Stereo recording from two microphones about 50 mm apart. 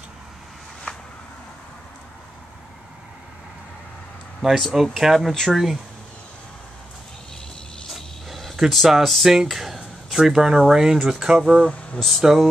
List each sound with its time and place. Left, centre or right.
0.9 s a sound: centre
4.4 s speech: centre
7.9 s cricket: centre
8.5 s speech: centre